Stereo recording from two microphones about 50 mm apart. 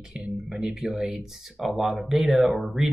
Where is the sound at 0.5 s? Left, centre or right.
Centre.